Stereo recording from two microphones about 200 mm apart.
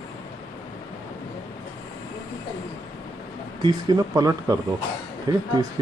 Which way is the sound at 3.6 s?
20° right (ahead or behind).